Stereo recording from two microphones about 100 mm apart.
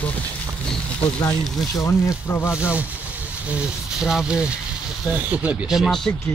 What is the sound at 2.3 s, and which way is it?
Speech, 25° left (ahead or behind).